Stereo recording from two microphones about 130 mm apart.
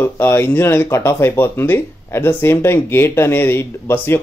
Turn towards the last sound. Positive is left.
turn(degrees=15)  # may be behind; listen again after turning